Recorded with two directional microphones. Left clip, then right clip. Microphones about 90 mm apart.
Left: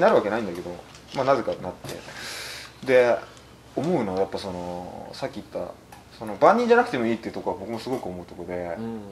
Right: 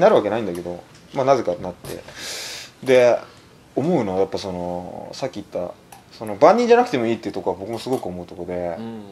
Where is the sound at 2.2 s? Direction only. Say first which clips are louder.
Right 5 dB; 30° right (ahead or behind).